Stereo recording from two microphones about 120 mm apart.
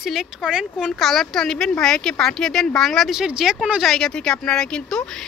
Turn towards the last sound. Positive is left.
turn(degrees=5)  # may be behind; listen again after turning